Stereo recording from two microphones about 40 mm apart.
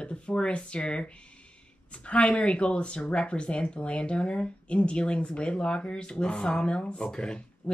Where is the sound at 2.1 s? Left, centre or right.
Left.